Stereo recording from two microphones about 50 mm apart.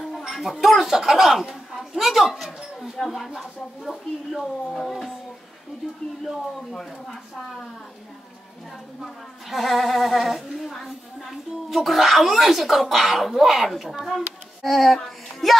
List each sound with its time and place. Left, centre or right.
0.3 s speech: centre
6.2 s speech: centre
9.0 s speech: centre
11.7 s speech: centre
14.0 s child singing: centre